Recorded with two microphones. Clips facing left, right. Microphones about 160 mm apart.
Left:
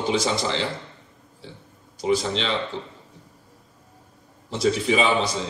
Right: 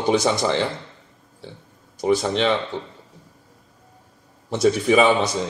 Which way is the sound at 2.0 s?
50° right (ahead or behind).